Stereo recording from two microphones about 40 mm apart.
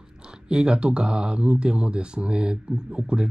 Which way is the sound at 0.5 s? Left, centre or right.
Right.